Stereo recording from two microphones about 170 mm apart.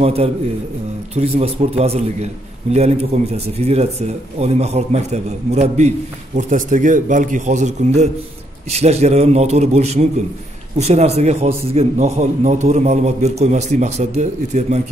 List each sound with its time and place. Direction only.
0.0 s a man's voice: 35° right (ahead or behind)